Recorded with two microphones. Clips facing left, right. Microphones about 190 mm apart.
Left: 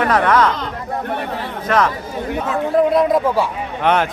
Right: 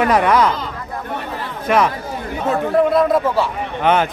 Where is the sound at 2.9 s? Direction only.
15° left (ahead or behind).